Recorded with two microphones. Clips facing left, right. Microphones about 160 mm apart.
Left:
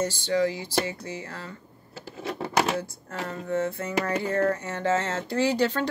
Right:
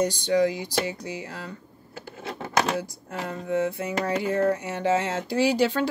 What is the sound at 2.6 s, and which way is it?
Speech, 5° right (ahead or behind).